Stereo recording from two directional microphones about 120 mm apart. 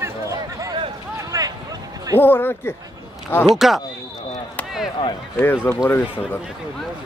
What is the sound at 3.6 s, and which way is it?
Speech, centre (ahead or behind).